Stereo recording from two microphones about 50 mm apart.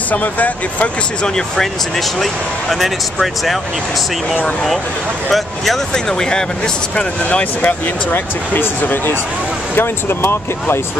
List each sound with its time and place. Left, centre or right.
0.1 s speech: left
1.2 s speech: centre
2.7 s speech: centre
5.3 s speech: centre
7.0 s speech: left
8.1 s speech: left